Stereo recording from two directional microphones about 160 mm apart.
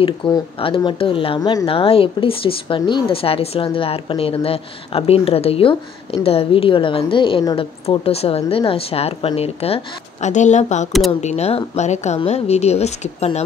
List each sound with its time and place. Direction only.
0.2 s speech: 30° left (ahead or behind)
10.2 s speech: 50° left (ahead or behind)